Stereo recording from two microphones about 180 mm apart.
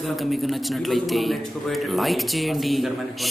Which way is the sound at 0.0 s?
Centre (ahead or behind).